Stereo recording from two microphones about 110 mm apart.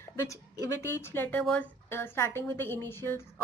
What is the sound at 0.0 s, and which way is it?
A woman's voice, 25° left (ahead or behind).